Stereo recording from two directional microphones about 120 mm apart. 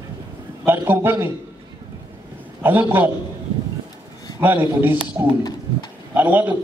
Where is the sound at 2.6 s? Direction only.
15° right (ahead or behind).